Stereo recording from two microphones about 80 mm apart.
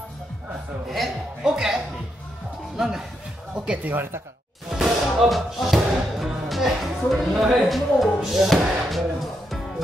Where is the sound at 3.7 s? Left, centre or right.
Right.